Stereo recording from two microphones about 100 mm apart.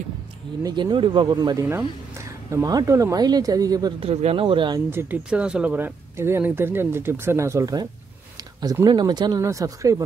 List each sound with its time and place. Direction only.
0.7 s speech: 50° right (ahead or behind)
4.0 s speech: 85° right; by 4.7 s 60° right (ahead or behind)
5.0 s speech: 25° right (ahead or behind)
5.3 s speech: 10° right (ahead or behind)
5.8 s speech: 20° right (ahead or behind); by 9.4 s 45° right (ahead or behind)
9.4 s speech: 30° right (ahead or behind)